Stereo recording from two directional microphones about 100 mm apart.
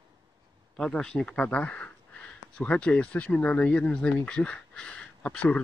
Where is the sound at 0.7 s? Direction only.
5° left (ahead or behind).